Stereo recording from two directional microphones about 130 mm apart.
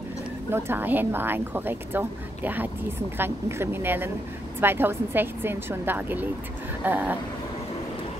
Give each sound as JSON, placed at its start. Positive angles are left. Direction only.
{"t": 0.5, "sound": "a woman's voice", "side_deg": -15}